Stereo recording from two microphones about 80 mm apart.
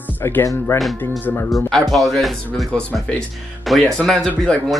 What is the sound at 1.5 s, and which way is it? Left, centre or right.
Speech, centre.